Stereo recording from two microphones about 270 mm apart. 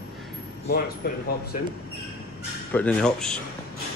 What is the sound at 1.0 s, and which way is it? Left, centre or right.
Speech, left.